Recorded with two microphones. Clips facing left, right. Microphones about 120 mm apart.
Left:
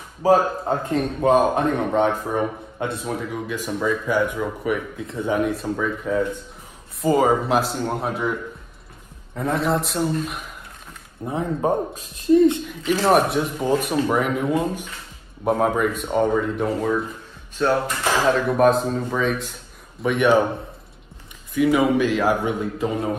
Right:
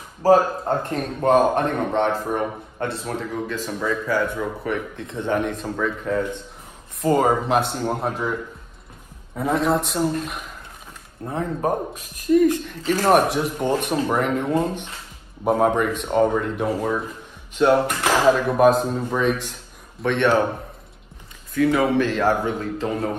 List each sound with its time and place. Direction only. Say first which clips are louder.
0.2 s speech: right 1 dB; centre (ahead or behind)
0.9 s a man's voice: left 1 dB; 10° left (ahead or behind)
11.2 s speech: left 1 dB; 15° left (ahead or behind)
11.9 s speech: left 1 dB; 30° left (ahead or behind)
13.1 s speech: right 1 dB; centre (ahead or behind)
17.6 s speech: right 4 dB; 25° right (ahead or behind)
18.2 s speech: right 1 dB; 5° right (ahead or behind)
20.0 s speech: left 1 dB; 10° left (ahead or behind)
21.5 s speech: left 1 dB; 15° left (ahead or behind)